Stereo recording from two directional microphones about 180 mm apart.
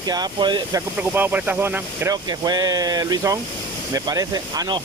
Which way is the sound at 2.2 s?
20° right (ahead or behind).